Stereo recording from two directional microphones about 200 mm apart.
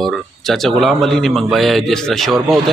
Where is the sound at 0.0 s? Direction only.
Centre (ahead or behind).